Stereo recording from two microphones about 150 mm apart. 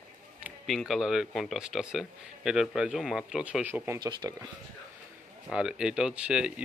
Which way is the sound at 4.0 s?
30° right (ahead or behind).